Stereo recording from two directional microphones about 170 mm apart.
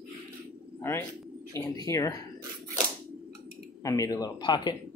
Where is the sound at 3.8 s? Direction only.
20° left (ahead or behind).